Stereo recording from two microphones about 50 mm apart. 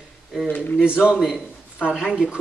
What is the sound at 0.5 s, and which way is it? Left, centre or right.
Speech, left.